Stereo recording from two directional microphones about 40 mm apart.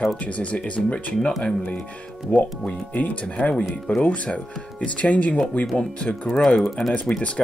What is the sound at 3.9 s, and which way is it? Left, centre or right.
Speech, left.